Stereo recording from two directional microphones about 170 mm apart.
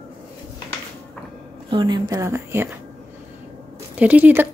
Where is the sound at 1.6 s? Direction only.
25° right (ahead or behind).